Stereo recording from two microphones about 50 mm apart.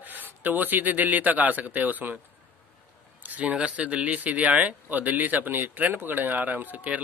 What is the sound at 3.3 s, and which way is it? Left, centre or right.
Speech, right.